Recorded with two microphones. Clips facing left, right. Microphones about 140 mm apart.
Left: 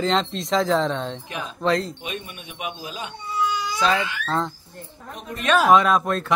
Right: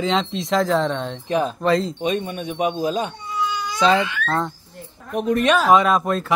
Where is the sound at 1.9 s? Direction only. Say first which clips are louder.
Right 11 dB; 40° right (ahead or behind).